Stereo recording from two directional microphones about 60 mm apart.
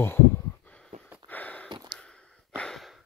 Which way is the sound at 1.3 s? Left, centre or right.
Left.